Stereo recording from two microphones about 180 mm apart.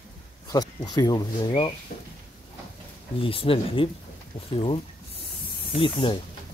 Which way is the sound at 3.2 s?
30° left (ahead or behind).